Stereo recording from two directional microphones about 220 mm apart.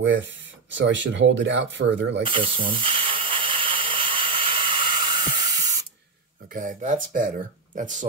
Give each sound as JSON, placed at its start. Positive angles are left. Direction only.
{"t": 0.0, "sound": "speech", "side_deg": -55}
{"t": 2.2, "sound": "steam", "side_deg": -25}
{"t": 6.5, "sound": "speech", "side_deg": -35}